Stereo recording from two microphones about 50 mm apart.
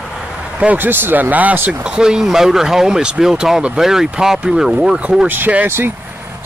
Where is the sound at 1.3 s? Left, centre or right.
Right.